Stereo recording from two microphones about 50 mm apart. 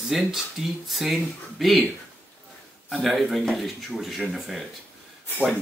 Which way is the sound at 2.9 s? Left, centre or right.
Centre.